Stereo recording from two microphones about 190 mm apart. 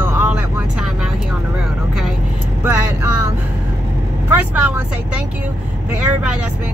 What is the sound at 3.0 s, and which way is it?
Vehicle, 90° left.